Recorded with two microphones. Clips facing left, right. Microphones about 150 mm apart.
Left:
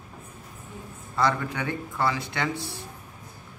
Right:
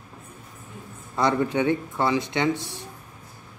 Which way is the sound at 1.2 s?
20° right (ahead or behind).